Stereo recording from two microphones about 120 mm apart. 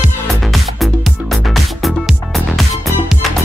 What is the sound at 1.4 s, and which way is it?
Music, centre (ahead or behind).